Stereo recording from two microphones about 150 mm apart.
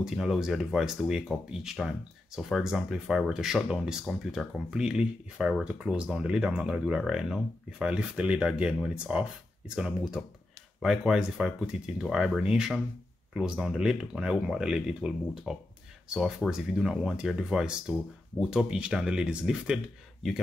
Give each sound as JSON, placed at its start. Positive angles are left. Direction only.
{"t": 0.0, "sound": "speech", "side_deg": 0}